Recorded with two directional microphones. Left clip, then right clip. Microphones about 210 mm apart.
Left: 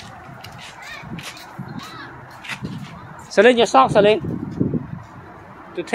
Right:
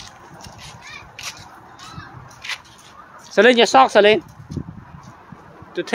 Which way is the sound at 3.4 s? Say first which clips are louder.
Right 1 dB; 30° right (ahead or behind).